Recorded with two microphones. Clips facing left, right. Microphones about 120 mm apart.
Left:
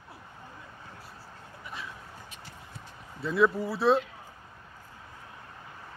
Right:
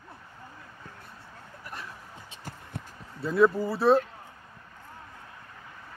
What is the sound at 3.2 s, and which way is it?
Speech, centre (ahead or behind).